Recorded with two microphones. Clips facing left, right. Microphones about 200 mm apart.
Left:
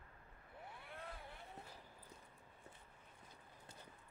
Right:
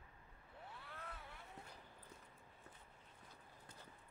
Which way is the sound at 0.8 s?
20° left (ahead or behind).